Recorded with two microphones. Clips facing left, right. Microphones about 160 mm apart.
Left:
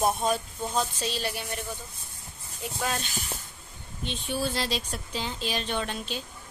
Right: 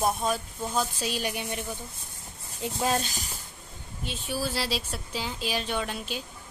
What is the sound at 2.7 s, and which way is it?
Speech, 30° right (ahead or behind).